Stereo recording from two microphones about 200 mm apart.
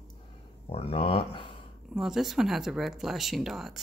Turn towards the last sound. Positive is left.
turn(degrees=0)  # may be behind; listen again after turning